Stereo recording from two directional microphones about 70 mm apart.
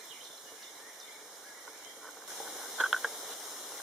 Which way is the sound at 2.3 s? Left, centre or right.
Centre.